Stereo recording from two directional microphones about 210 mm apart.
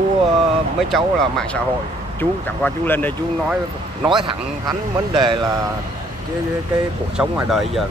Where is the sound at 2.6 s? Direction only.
10° left (ahead or behind).